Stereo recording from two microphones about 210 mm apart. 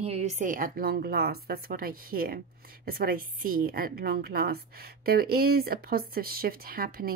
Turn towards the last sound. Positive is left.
turn(degrees=-45)  # may be behind; listen again after turning